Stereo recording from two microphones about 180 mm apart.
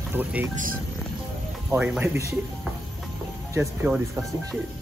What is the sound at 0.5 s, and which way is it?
Speech, 50° right (ahead or behind).